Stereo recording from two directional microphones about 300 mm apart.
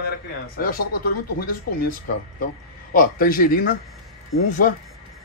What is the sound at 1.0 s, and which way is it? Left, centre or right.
Speech, left.